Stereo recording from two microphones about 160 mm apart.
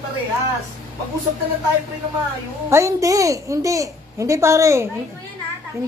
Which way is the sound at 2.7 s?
20° right (ahead or behind).